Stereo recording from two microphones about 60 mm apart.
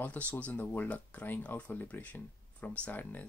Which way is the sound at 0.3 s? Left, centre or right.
Left.